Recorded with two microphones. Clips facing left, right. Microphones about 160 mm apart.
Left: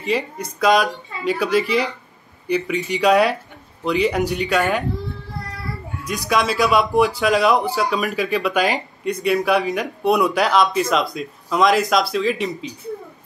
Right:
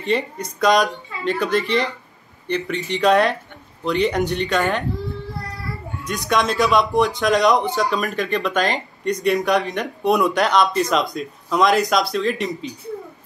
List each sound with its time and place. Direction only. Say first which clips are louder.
0.1 s a man's voice: right 1 dB; centre (ahead or behind)
6.0 s a man's voice: even; 5° left (ahead or behind)